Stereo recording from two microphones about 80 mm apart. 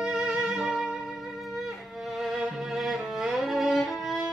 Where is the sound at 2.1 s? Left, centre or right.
Centre.